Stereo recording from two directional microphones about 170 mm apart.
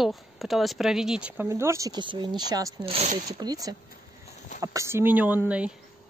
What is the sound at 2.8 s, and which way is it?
Speech, 35° right (ahead or behind).